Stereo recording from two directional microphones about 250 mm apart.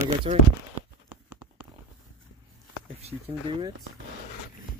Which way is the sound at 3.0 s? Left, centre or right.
Right.